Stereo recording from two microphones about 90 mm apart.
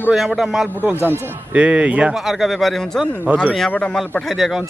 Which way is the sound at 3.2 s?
15° right (ahead or behind).